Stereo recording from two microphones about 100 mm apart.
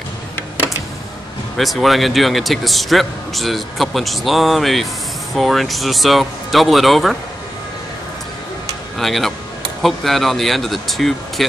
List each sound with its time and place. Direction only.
1.6 s a man's voice: centre (ahead or behind)
8.9 s a man's voice: centre (ahead or behind)